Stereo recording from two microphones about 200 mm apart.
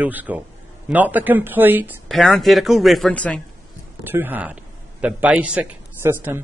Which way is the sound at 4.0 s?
10° right (ahead or behind).